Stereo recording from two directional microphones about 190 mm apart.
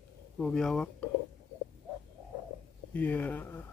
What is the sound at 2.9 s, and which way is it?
Speech, 10° left (ahead or behind).